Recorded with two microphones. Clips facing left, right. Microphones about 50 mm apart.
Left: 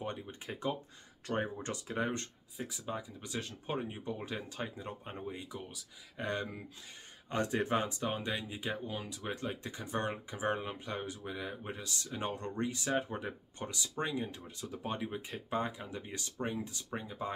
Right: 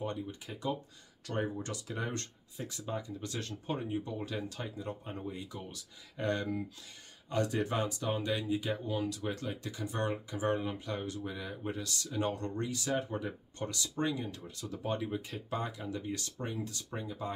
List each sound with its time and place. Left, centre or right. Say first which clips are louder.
0.0 s speech: right 3 dB; left
2.5 s speech: right 1 dB; centre
7.2 s speech: right 1 dB; left